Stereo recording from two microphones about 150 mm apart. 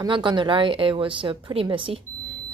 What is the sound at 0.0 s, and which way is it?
A woman's voice, 30° right (ahead or behind).